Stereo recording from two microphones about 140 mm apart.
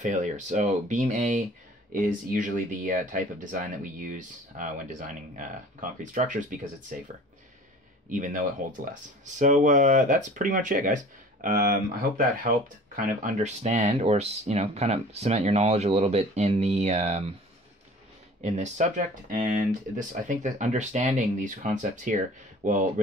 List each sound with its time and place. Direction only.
0.0 s speech: 60° right (ahead or behind)
1.9 s speech: 75° right (ahead or behind)
8.1 s speech: 70° right (ahead or behind)
11.4 s speech: 90° right; by 17.4 s 50° right (ahead or behind)
18.4 s speech: 55° right (ahead or behind)